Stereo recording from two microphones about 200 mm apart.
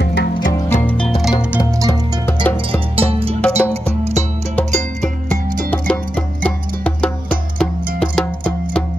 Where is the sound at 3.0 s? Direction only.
30° right (ahead or behind).